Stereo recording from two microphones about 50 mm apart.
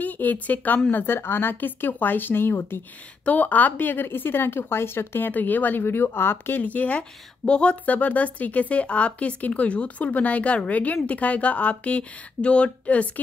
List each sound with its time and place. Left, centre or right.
0.0 s speech: left
0.9 s speech: left
3.3 s speech: left
5.3 s speech: left
6.6 s speech: left
7.8 s speech: left